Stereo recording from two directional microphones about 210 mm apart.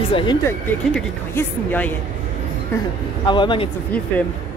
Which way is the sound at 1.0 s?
5° left (ahead or behind).